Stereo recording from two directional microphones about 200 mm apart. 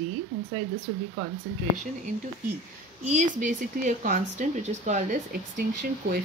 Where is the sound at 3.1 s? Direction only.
40° right (ahead or behind).